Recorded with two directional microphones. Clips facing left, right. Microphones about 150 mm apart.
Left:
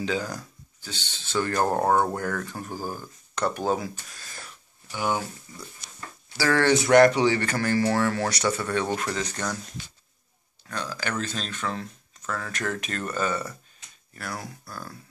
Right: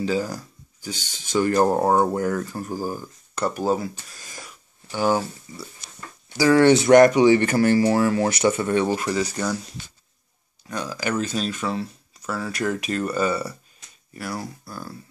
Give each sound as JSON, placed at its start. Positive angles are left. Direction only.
{"t": 0.0, "sound": "speech", "side_deg": -5}
{"t": 4.2, "sound": "a sound", "side_deg": -10}
{"t": 4.9, "sound": "speech", "side_deg": -35}
{"t": 6.3, "sound": "speech", "side_deg": -15}
{"t": 7.4, "sound": "speech", "side_deg": -25}
{"t": 8.5, "sound": "speech", "side_deg": -20}
{"t": 8.8, "sound": "speech", "side_deg": -10}